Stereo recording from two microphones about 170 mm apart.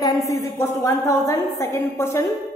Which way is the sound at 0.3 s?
15° left (ahead or behind).